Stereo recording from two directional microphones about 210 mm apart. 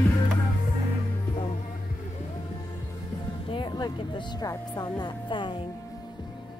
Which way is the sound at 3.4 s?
20° left (ahead or behind).